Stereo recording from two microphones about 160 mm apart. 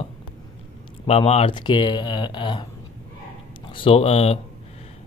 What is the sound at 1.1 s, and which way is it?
Speech, 40° left (ahead or behind).